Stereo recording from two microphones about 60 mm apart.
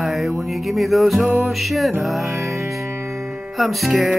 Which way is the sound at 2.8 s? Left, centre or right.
Right.